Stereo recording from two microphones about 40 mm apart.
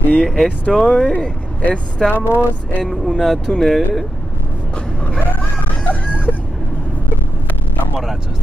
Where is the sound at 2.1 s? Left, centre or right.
Right.